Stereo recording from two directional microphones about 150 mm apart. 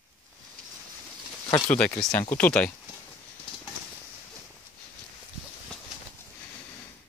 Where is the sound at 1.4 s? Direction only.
30° left (ahead or behind).